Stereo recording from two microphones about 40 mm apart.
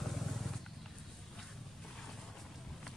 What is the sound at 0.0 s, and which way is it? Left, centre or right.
Wild animals, centre.